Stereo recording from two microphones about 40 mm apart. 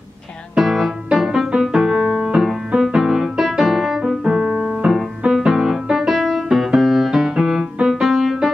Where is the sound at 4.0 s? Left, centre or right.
Centre.